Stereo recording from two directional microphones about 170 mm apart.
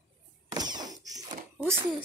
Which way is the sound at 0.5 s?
25° right (ahead or behind).